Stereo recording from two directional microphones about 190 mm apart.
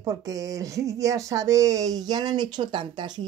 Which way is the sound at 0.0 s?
20° right (ahead or behind).